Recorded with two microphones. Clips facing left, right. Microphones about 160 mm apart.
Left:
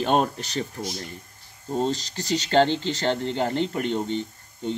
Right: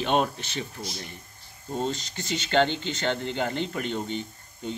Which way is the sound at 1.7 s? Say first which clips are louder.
Left 4 dB; 35° left (ahead or behind).